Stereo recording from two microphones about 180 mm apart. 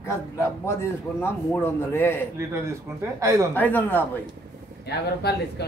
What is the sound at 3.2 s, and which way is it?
Speech, 15° right (ahead or behind).